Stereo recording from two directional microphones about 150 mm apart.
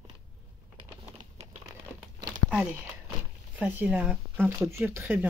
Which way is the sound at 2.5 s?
5° right (ahead or behind).